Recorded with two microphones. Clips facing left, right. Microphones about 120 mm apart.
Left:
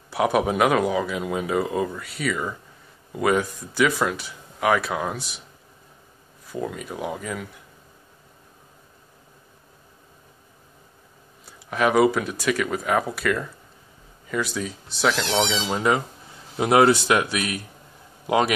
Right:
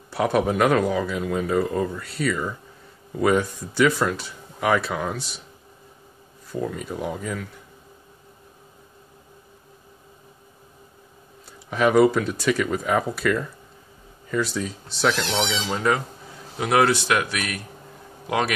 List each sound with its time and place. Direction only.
0.1 s speech: 5° left (ahead or behind)
6.5 s speech: 5° left (ahead or behind)
11.7 s speech: 5° left (ahead or behind)
15.7 s a man's voice: 15° left (ahead or behind)